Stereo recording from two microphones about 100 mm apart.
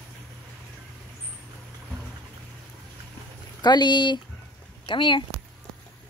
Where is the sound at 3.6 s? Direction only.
45° left (ahead or behind).